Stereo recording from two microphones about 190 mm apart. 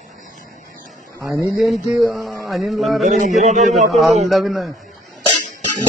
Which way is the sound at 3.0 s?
40° right (ahead or behind).